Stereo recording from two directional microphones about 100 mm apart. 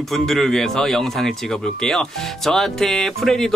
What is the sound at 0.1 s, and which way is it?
Speech, 5° left (ahead or behind).